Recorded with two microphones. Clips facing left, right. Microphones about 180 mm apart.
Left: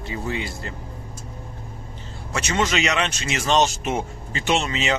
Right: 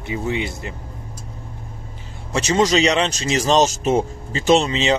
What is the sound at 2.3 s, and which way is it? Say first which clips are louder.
Speech: right 6 dB; 35° right (ahead or behind).